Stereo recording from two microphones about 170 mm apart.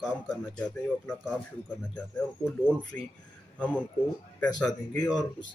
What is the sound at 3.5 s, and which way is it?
Speech, 10° left (ahead or behind).